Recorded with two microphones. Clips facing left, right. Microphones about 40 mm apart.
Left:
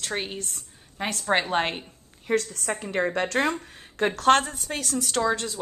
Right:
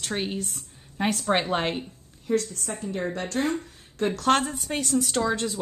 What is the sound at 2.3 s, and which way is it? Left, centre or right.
A woman's voice, left.